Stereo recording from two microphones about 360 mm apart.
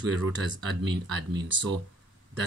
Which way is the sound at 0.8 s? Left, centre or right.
Right.